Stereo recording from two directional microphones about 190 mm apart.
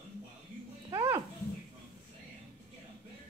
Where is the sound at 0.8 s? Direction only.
20° right (ahead or behind).